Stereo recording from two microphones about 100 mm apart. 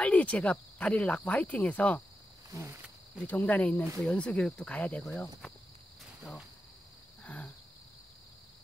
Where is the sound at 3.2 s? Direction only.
15° left (ahead or behind).